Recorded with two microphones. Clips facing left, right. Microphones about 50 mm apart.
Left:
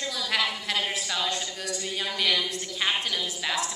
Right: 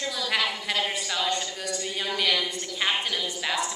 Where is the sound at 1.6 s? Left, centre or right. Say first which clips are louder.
Right 1 dB; centre.